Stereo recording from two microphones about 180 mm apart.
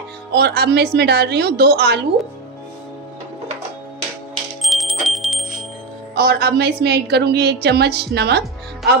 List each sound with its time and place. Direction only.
0.3 s a woman's voice: 65° right (ahead or behind)
4.6 s music: centre (ahead or behind)
6.1 s a woman's voice: 60° right (ahead or behind)